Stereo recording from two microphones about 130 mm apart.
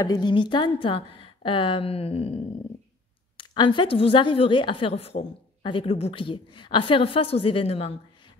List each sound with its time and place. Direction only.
0.0 s a woman's voice: 30° left (ahead or behind); by 5.2 s 50° left (ahead or behind)
5.6 s a woman's voice: 40° left (ahead or behind)